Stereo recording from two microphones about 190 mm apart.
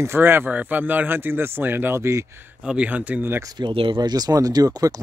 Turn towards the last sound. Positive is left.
turn(degrees=-20)  # may be behind; listen again after turning